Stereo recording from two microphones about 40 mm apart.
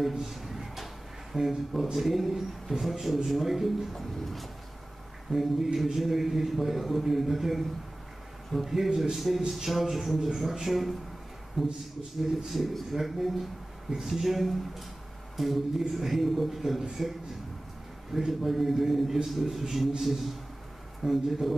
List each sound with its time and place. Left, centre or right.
0.3 s a sound: centre
1.3 s speech: centre
18.1 s speech: centre